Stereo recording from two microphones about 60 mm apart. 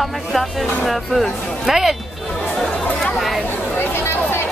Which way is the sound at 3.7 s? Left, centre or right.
Left.